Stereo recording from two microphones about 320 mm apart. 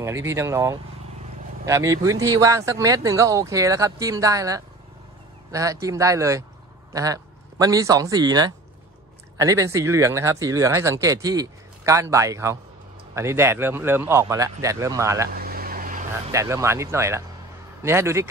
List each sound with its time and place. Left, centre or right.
0.0 s a man's voice: centre
15.3 s vehicle: right
16.3 s speech: centre